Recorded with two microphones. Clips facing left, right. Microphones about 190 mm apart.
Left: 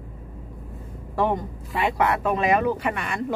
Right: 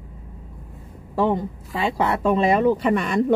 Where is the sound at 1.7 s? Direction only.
30° right (ahead or behind).